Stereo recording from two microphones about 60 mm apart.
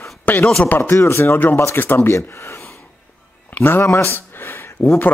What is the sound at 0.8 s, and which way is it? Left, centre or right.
Speech, left.